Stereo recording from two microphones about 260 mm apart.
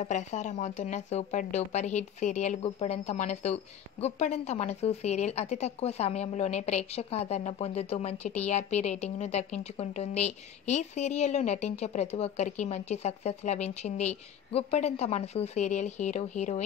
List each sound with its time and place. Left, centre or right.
0.0 s speech: left